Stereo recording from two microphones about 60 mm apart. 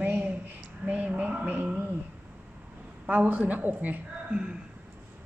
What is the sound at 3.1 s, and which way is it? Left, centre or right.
Speech, right.